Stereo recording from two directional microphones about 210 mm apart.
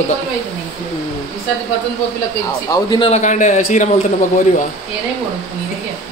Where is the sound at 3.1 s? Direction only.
35° left (ahead or behind).